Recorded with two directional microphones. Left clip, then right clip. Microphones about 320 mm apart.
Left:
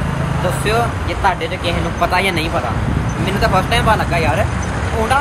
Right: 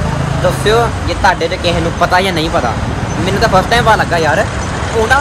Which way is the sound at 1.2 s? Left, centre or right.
Centre.